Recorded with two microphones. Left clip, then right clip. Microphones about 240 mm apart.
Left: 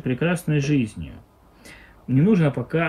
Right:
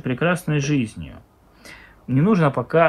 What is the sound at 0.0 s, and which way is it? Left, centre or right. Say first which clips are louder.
Speech: right 3 dB; centre.